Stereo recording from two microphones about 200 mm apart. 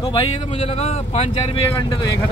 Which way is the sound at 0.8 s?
30° left (ahead or behind).